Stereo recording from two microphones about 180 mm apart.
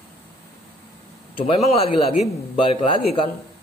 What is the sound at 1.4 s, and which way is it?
Speech, 30° left (ahead or behind).